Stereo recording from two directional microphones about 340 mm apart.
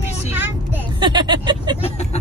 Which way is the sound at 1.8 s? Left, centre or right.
Centre.